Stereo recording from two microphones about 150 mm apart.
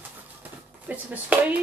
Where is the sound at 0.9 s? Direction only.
10° right (ahead or behind).